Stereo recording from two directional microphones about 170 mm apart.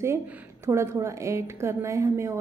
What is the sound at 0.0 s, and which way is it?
A woman's voice, 15° right (ahead or behind).